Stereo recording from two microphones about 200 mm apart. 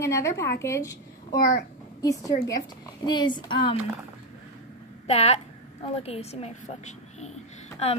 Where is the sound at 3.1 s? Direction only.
20° left (ahead or behind).